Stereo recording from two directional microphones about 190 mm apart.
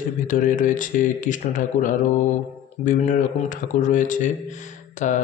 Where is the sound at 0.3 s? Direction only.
45° left (ahead or behind).